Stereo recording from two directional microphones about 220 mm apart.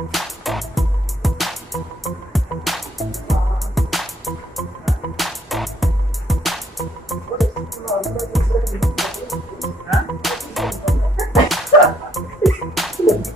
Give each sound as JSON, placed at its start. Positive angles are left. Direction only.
{"t": 0.1, "sound": "music", "side_deg": 0}